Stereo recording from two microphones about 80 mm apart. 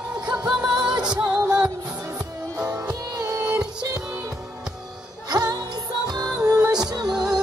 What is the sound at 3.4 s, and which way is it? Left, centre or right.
Music, centre.